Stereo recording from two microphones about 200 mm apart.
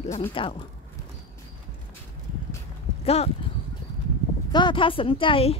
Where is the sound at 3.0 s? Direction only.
30° left (ahead or behind).